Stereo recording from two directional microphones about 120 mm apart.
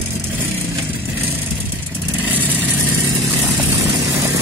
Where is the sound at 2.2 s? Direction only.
15° right (ahead or behind).